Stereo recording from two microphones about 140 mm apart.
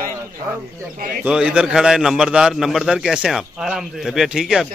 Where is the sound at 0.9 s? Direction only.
90° right.